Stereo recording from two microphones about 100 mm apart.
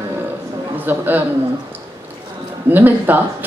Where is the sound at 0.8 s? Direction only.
20° right (ahead or behind).